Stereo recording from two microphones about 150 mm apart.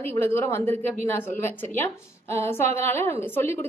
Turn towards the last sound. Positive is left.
turn(degrees=15)  # may be behind; listen again after turning